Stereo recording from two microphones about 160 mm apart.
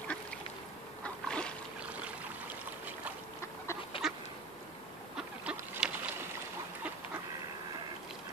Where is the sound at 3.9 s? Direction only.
35° left (ahead or behind).